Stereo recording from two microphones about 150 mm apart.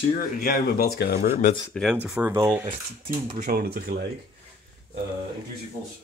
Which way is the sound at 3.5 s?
90° right.